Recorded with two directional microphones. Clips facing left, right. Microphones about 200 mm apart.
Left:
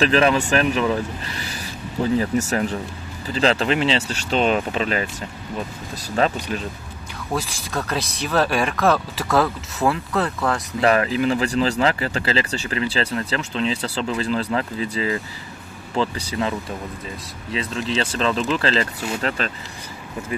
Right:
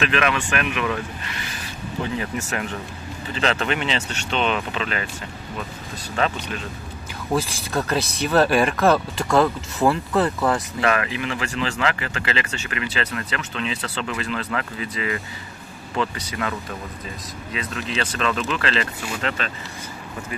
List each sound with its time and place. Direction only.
0.0 s speech: 35° left (ahead or behind)
6.1 s speech: 35° left (ahead or behind)
7.3 s speech: centre (ahead or behind)
10.8 s speech: 35° left (ahead or behind)